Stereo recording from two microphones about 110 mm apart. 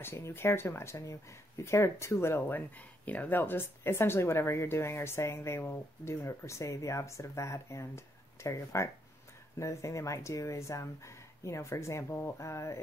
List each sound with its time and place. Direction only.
0.0 s speech: 20° left (ahead or behind)